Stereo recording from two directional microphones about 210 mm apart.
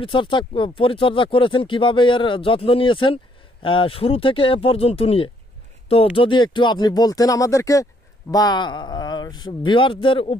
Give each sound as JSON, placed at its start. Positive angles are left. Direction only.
{"t": 0.0, "sound": "speech", "side_deg": 20}